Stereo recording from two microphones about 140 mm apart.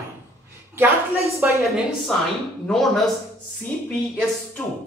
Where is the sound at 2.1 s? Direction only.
5° left (ahead or behind).